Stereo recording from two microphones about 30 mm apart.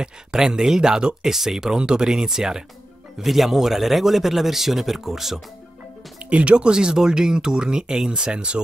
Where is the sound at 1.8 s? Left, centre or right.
Right.